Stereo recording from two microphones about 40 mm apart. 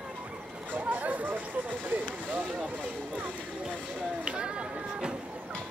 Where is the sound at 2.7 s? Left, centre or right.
Right.